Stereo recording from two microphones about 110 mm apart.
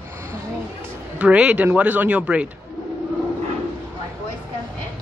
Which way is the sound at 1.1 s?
10° right (ahead or behind).